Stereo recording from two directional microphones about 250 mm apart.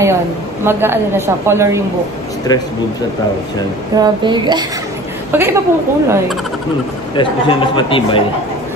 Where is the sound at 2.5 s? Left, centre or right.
Centre.